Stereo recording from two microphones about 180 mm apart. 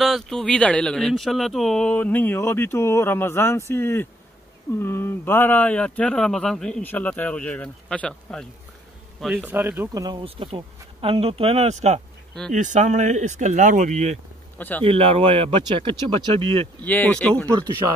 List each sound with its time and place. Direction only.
0.0 s speech: centre (ahead or behind)
9.5 s speech: 10° right (ahead or behind)
10.2 s speech: 30° right (ahead or behind)
14.6 s speech: 10° left (ahead or behind)
14.9 s speech: 30° right (ahead or behind)
16.8 s speech: 10° left (ahead or behind)